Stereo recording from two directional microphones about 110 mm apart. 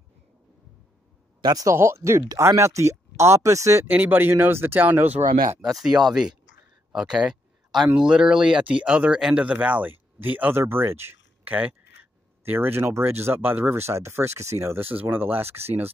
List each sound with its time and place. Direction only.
1.4 s speech: 35° right (ahead or behind)
3.8 s speech: 15° right (ahead or behind)
5.6 s speech: 5° right (ahead or behind); by 15.9 s 20° right (ahead or behind)